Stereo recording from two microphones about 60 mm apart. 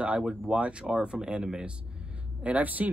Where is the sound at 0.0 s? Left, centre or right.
Centre.